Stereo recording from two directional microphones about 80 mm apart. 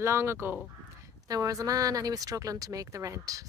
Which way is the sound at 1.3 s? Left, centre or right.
Right.